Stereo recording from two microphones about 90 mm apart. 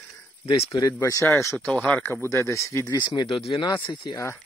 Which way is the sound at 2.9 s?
50° left (ahead or behind).